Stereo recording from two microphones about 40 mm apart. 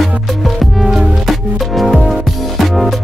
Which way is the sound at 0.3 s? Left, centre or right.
Centre.